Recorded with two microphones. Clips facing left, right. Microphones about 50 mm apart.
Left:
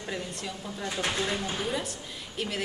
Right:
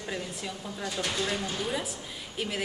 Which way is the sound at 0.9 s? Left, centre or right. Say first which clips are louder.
Left 1 dB; left.